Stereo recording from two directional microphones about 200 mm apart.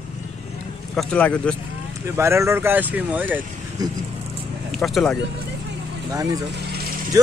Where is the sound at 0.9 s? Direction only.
5° left (ahead or behind).